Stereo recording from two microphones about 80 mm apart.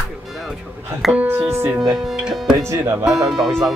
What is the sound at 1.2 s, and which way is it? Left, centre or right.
Speech, right.